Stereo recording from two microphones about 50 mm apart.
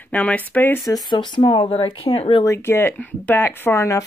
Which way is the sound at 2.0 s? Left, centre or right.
Left.